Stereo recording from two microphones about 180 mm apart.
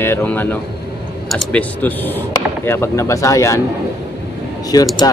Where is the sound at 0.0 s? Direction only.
10° left (ahead or behind).